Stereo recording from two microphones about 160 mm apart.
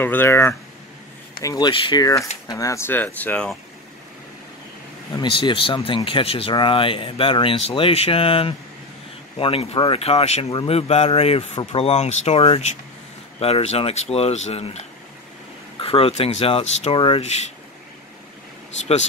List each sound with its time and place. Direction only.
0.0 s speech: 15° left (ahead or behind)
5.1 s speech: 30° left (ahead or behind)
15.8 s speech: 35° left (ahead or behind)